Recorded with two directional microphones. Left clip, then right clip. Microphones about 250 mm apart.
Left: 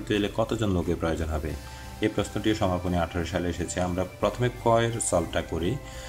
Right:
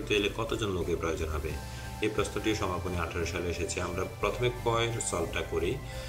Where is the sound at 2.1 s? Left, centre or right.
Left.